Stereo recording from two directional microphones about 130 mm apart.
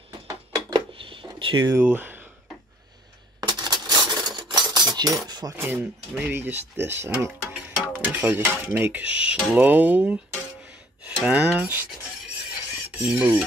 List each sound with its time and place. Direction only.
0.3 s a sound: 35° right (ahead or behind)
1.7 s dishes: 15° right (ahead or behind)
3.3 s cutlery: 35° right (ahead or behind)
5.6 s dishes: 15° right (ahead or behind)
6.9 s speech: 20° right (ahead or behind)
7.6 s dishes: 15° right (ahead or behind)
11.2 s dishes: 10° right (ahead or behind)
13.0 s dishes: 10° right (ahead or behind)